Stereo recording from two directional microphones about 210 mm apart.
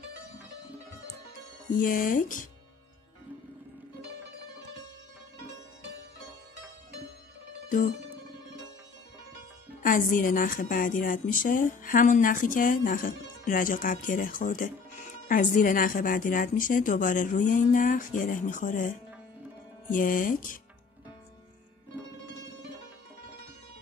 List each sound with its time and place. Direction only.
1.7 s a woman's voice: 40° left (ahead or behind)
9.8 s a woman's voice: 40° left (ahead or behind)
21.9 s music: 10° right (ahead or behind)